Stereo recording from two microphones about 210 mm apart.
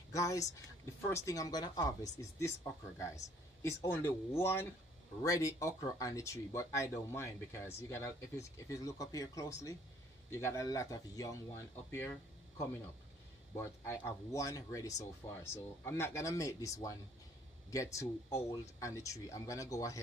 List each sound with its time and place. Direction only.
0.1 s a woman's voice: 15° left (ahead or behind)